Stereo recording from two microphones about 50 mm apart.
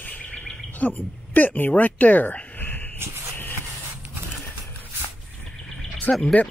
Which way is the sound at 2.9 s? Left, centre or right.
Right.